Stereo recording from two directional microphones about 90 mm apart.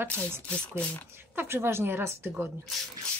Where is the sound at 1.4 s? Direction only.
25° right (ahead or behind).